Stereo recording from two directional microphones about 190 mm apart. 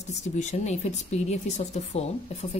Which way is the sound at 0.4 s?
35° left (ahead or behind).